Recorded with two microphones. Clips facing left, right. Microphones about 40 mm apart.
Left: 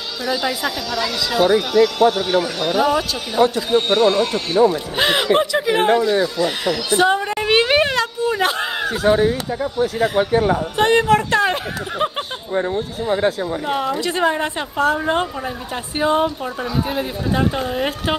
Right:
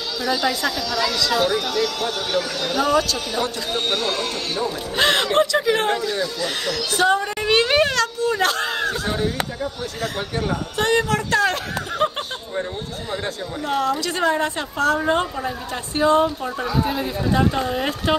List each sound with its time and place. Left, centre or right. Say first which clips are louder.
0.2 s speech: even; centre; by 11.5 s left
12.0 s a sound: even; centre
13.1 s speech: left 9 dB; centre